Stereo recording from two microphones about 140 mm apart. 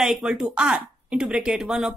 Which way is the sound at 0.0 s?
5° right (ahead or behind).